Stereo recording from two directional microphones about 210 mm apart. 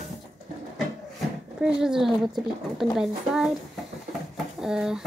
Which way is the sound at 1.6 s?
5° right (ahead or behind).